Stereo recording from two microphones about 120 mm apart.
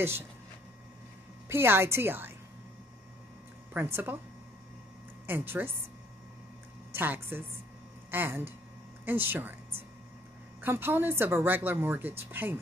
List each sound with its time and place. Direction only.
1.5 s a woman's voice: 20° right (ahead or behind)
3.7 s speech: 15° right (ahead or behind)
5.2 s speech: 15° right (ahead or behind)
6.9 s a woman's voice: 20° right (ahead or behind)
10.6 s speech: 15° right (ahead or behind)